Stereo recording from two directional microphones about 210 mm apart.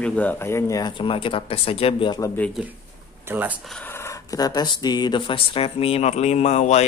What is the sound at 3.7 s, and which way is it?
Speech, 10° left (ahead or behind).